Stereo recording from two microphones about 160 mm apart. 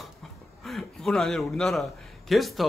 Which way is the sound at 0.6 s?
Centre (ahead or behind).